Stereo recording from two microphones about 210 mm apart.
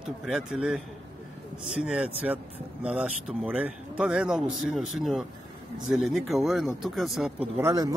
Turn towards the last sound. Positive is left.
turn(degrees=-15)  # may be behind; listen again after turning